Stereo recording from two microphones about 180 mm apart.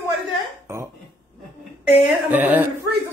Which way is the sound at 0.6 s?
15° right (ahead or behind).